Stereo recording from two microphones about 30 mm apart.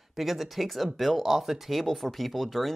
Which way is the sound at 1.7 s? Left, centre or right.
Centre.